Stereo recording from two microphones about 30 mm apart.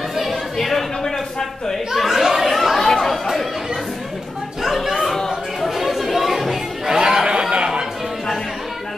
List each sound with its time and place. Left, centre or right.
0.1 s chatter: centre
2.0 s a sound: centre
2.2 s chatter: centre
2.9 s chatter: centre
4.9 s chatter: centre
6.9 s a sound: right
7.5 s chatter: right